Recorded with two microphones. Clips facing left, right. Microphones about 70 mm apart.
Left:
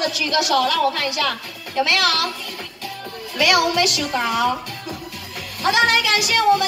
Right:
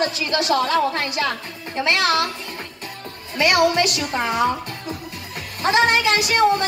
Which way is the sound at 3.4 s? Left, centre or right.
Right.